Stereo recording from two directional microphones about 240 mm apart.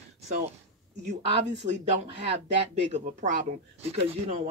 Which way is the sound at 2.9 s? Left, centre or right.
Right.